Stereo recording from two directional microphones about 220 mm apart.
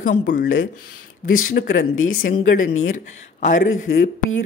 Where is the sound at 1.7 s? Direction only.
65° left (ahead or behind).